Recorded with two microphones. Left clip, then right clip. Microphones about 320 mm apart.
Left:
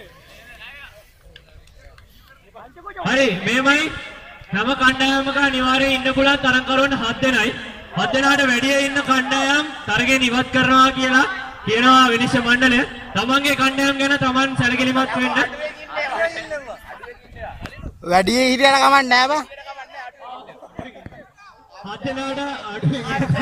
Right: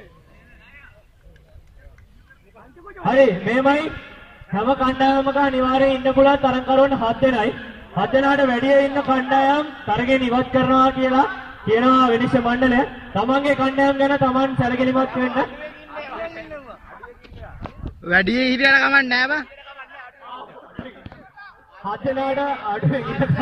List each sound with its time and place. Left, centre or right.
3.0 s a man's voice: right
18.0 s a man's voice: centre
21.8 s a man's voice: right